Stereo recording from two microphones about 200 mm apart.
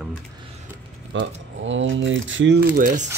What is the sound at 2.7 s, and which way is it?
Speech, 40° right (ahead or behind).